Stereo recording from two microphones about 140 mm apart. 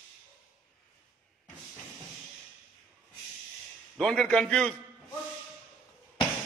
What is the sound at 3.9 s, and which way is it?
Speech, 5° left (ahead or behind).